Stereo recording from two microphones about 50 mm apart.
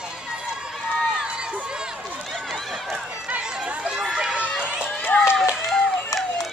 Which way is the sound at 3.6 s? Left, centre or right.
Right.